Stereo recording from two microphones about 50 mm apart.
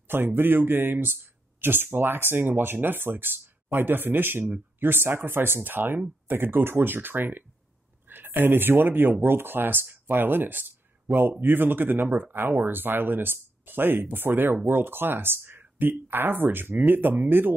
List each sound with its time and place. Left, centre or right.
0.1 s speech: right